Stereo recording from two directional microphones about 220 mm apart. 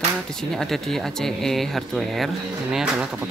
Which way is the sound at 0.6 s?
Centre (ahead or behind).